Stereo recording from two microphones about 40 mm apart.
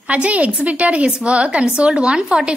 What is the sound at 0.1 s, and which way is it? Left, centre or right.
A woman's voice, right.